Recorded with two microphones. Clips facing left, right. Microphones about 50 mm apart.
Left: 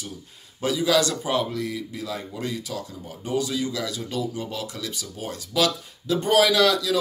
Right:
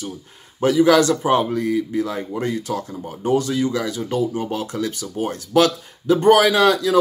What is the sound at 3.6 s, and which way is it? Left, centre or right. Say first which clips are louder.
Speech: right 7 dB; right.